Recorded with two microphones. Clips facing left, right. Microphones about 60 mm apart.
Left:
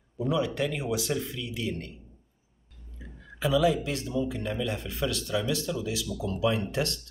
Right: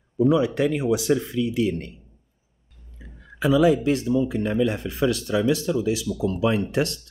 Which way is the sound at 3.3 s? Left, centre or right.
Right.